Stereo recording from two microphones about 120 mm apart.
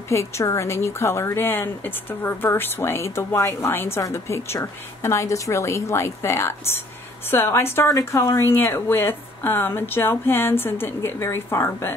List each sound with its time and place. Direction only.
0.1 s a woman's voice: 25° left (ahead or behind)